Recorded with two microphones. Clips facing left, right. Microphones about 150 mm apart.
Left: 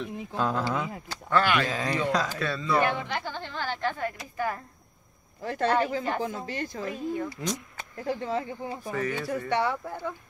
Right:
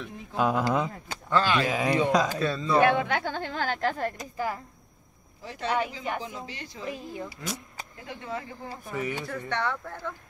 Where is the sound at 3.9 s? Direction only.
35° right (ahead or behind).